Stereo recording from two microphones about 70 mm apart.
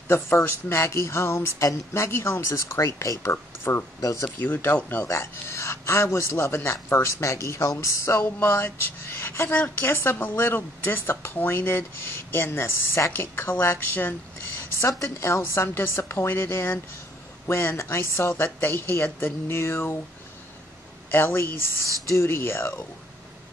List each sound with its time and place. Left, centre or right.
0.1 s a woman's voice: left
4.0 s speech: left
4.4 s a woman's voice: left
5.1 s a woman's voice: left
21.1 s a woman's voice: left